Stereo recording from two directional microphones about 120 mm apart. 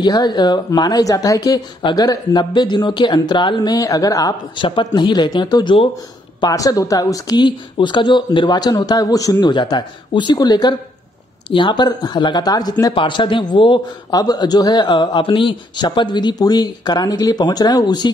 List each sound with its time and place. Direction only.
0.0 s a man's voice: 35° left (ahead or behind)
4.6 s a man's voice: 40° left (ahead or behind)